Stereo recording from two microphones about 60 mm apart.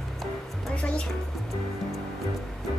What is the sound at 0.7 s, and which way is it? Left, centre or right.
Music, centre.